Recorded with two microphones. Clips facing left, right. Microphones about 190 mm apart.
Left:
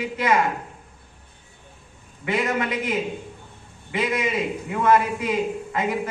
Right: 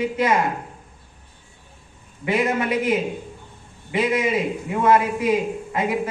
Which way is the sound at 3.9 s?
30° right (ahead or behind).